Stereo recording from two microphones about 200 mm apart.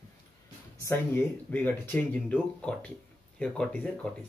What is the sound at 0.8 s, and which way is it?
Speech, 10° left (ahead or behind).